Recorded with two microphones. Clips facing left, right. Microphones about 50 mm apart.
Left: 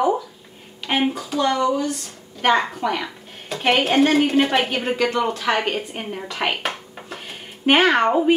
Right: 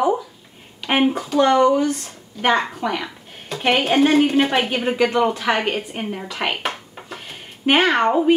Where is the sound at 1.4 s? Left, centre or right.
Right.